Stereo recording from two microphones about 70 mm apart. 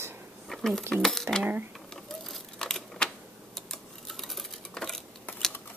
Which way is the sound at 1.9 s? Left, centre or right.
Centre.